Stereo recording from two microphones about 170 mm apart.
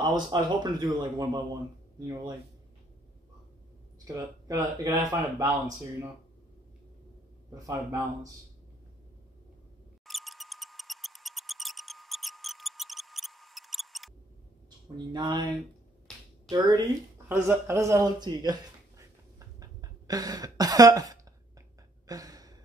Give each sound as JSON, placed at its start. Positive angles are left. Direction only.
{"t": 0.0, "sound": "speech", "side_deg": -25}
{"t": 4.1, "sound": "speech", "side_deg": -20}
{"t": 7.5, "sound": "speech", "side_deg": -20}
{"t": 10.0, "sound": "mouse", "side_deg": 0}
{"t": 15.1, "sound": "speech", "side_deg": -25}
{"t": 16.4, "sound": "speech", "side_deg": -25}
{"t": 22.0, "sound": "gasp", "side_deg": -20}